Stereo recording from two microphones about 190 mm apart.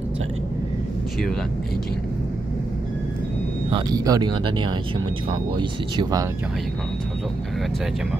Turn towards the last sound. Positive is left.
turn(degrees=-25)  # may be behind; listen again after turning